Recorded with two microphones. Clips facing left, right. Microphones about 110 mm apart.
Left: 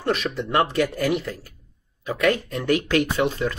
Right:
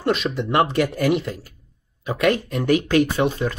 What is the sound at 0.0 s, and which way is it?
Speech, 20° right (ahead or behind).